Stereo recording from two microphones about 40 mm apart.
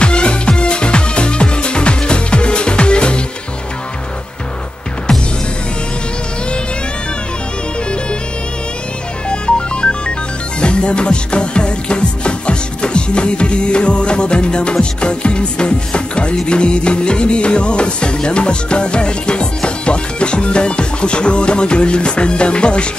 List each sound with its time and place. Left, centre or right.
0.0 s music: left
9.3 s music: left